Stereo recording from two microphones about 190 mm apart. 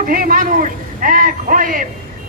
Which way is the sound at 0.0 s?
50° right (ahead or behind).